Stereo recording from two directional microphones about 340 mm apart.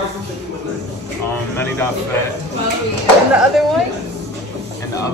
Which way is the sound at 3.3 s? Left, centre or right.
Centre.